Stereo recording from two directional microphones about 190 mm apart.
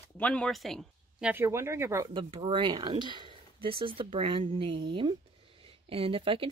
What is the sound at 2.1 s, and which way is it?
Speech, 25° right (ahead or behind).